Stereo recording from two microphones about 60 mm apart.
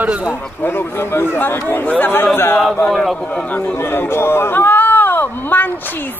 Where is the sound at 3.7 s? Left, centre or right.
Left.